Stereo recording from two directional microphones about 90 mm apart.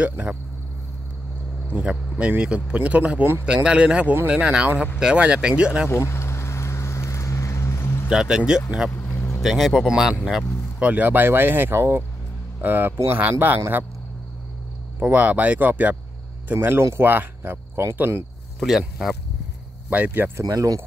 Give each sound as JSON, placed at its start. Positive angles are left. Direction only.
{"t": 0.0, "sound": "speech", "side_deg": -15}
{"t": 1.7, "sound": "speech", "side_deg": -10}
{"t": 5.9, "sound": "vehicle", "side_deg": 25}
{"t": 8.1, "sound": "speech", "side_deg": -5}
{"t": 8.9, "sound": "vehicle", "side_deg": 25}
{"t": 9.3, "sound": "speech", "side_deg": 0}
{"t": 10.8, "sound": "speech", "side_deg": -20}
{"t": 15.0, "sound": "speech", "side_deg": -15}
{"t": 18.8, "sound": "speech", "side_deg": 0}
{"t": 19.9, "sound": "speech", "side_deg": -15}
{"t": 20.3, "sound": "speech", "side_deg": -40}